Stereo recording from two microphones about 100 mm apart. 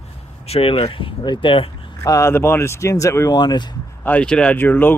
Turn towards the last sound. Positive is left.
turn(degrees=20)  # may be behind; listen again after turning